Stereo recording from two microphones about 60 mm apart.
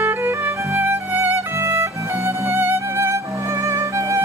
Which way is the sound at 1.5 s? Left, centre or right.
Right.